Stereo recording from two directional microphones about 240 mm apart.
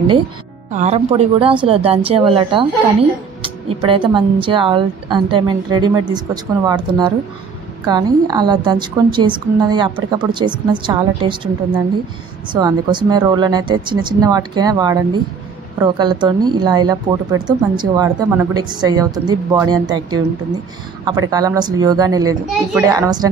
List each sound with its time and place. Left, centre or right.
0.7 s speech: right
7.8 s speech: centre
12.5 s speech: centre